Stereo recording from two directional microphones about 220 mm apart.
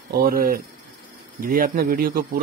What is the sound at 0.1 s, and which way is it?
Speech, 40° right (ahead or behind).